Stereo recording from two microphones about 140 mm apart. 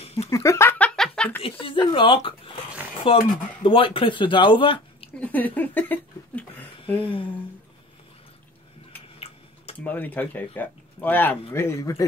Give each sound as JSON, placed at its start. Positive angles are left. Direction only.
{"t": 0.0, "sound": "a sound", "side_deg": 45}
{"t": 0.3, "sound": "a sound", "side_deg": 20}
{"t": 1.4, "sound": "speech", "side_deg": 40}
{"t": 5.2, "sound": "speech", "side_deg": 10}
{"t": 7.0, "sound": "speech", "side_deg": 40}
{"t": 9.8, "sound": "speech", "side_deg": 10}